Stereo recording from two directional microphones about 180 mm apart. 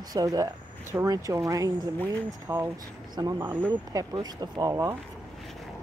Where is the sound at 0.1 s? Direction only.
20° right (ahead or behind).